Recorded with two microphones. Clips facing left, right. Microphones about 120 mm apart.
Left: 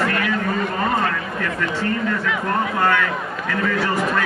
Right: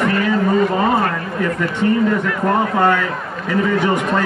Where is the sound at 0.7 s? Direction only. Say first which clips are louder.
Right 4 dB; 5° right (ahead or behind).